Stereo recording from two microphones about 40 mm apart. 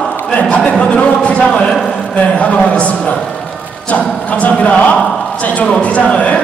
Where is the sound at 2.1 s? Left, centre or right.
Left.